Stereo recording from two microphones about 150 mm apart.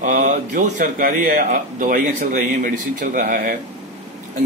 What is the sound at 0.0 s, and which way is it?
Speech, 60° right (ahead or behind).